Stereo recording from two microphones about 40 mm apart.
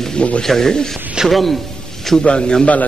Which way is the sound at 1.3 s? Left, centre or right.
Centre.